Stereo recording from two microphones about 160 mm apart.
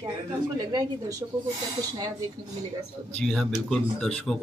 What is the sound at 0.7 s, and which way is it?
Speech, 25° right (ahead or behind).